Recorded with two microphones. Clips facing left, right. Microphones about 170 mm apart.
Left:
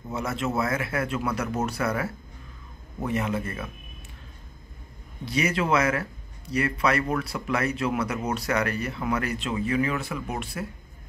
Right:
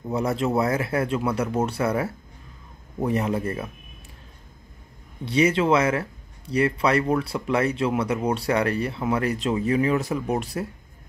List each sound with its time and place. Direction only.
0.1 s speech: 35° right (ahead or behind)
5.2 s speech: 30° right (ahead or behind)